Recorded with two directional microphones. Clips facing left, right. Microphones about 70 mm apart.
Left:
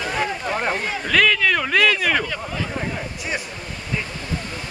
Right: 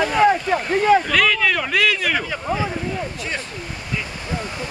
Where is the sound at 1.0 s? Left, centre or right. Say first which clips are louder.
Even; centre.